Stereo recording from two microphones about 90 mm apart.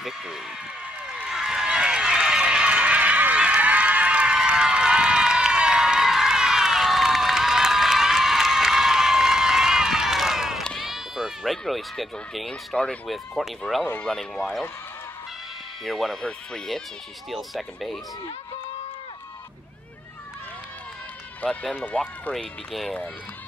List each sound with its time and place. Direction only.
1.1 s run: 5° right (ahead or behind)
10.8 s speech: 5° right (ahead or behind)
15.8 s speech: centre (ahead or behind)
21.4 s speech: 10° left (ahead or behind)
22.3 s speech: centre (ahead or behind)